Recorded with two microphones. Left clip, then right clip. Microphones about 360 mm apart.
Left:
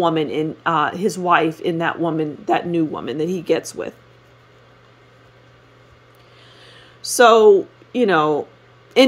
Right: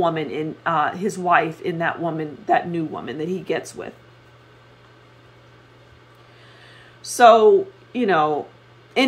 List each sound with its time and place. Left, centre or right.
0.0 s speech: left
6.6 s a man's voice: left